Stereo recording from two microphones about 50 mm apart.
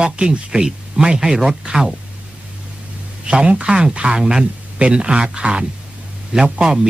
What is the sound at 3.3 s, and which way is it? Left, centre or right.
Speech, right.